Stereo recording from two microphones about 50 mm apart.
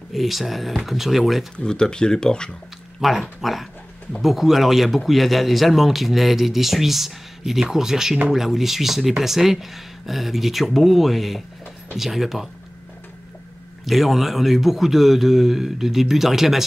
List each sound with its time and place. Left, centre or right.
0.1 s speech: centre
1.6 s speech: centre
3.0 s speech: centre
13.8 s speech: centre